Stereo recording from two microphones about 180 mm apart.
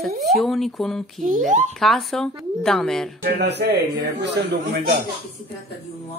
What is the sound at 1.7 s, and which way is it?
A woman's voice, centre (ahead or behind).